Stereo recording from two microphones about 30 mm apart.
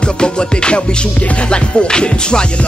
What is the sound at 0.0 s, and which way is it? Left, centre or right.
Music, left.